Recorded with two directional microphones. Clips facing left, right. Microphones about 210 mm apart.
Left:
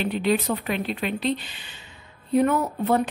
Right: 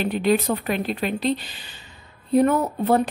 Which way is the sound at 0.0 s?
45° right (ahead or behind).